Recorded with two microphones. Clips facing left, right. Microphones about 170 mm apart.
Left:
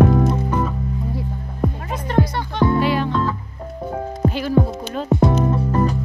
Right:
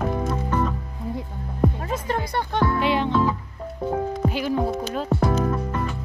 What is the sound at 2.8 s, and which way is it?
Music, 20° right (ahead or behind).